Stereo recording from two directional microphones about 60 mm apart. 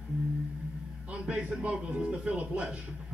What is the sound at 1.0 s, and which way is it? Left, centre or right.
A man's voice, centre.